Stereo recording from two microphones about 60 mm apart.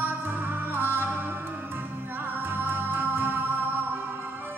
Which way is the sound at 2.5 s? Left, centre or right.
Right.